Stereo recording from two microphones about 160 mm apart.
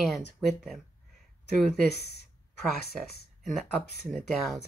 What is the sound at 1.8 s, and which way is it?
Speech, 90° left.